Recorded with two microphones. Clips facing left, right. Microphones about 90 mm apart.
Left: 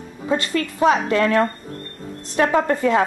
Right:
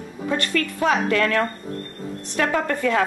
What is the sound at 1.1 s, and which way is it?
Speech, 20° left (ahead or behind).